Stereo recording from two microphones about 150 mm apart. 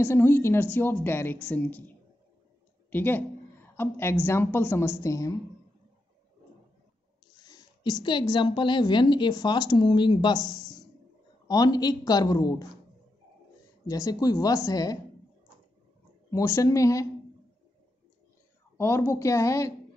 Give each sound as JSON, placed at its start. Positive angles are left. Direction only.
{"t": 0.0, "sound": "a woman's voice", "side_deg": 15}
{"t": 7.3, "sound": "a woman's voice", "side_deg": 25}
{"t": 13.8, "sound": "a woman's voice", "side_deg": 25}
{"t": 16.3, "sound": "a woman's voice", "side_deg": 20}
{"t": 18.8, "sound": "a woman's voice", "side_deg": 15}